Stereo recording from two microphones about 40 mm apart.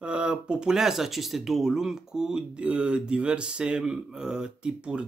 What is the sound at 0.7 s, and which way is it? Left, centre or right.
Speech, centre.